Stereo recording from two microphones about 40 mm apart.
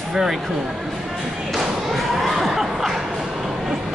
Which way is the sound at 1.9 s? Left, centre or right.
Centre.